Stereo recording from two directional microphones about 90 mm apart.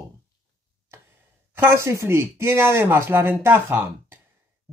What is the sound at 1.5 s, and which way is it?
Speech, 25° right (ahead or behind).